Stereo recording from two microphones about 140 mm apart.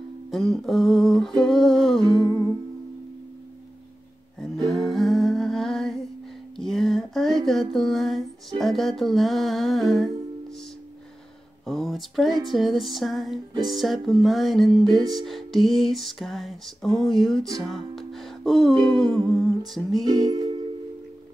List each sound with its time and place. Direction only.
0.3 s music: centre (ahead or behind)
2.0 s music: 25° right (ahead or behind)
4.4 s music: 5° left (ahead or behind)
6.5 s a sound: 5° left (ahead or behind)
7.4 s music: centre (ahead or behind)
11.6 s speech: centre (ahead or behind)
12.4 s music: centre (ahead or behind)
20.2 s music: 30° right (ahead or behind)